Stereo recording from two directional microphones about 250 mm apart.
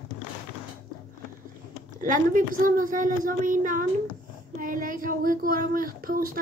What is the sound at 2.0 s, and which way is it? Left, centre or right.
Speech, right.